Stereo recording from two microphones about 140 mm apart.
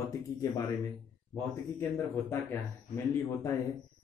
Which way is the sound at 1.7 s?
15° left (ahead or behind).